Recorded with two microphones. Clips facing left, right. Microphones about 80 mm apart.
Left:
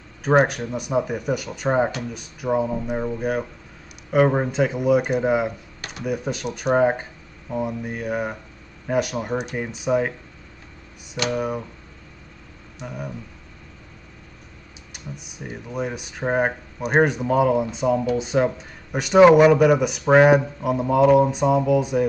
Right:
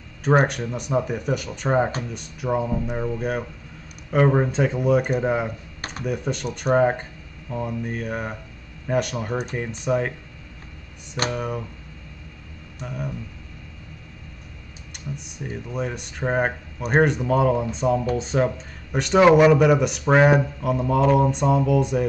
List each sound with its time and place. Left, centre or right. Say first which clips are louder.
0.2 s speech: left 1 dB; centre
5.8 s computer keyboard: right 2 dB; right
6.0 s speech: left 1 dB; centre
11.2 s speech: left 3 dB; centre
12.8 s speech: right 1 dB; centre
15.1 s speech: right 2 dB; centre